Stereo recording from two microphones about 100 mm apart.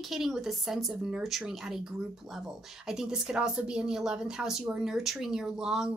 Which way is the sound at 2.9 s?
5° right (ahead or behind).